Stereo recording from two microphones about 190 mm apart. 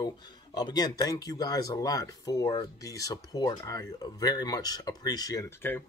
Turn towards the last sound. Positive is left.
turn(degrees=15)  # may be behind; listen again after turning